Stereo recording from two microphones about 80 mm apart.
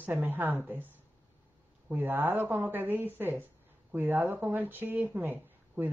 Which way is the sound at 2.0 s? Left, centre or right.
Right.